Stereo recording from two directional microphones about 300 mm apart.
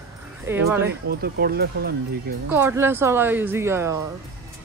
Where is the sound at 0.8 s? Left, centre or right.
Right.